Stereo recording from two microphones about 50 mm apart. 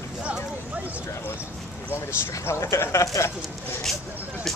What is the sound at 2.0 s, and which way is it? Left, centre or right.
Speech, left.